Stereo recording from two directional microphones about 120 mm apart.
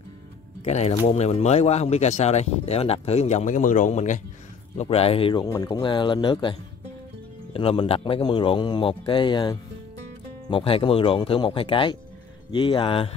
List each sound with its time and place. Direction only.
0.7 s speech: 60° left (ahead or behind); by 4.2 s 90° left
4.8 s a man's voice: 55° left (ahead or behind)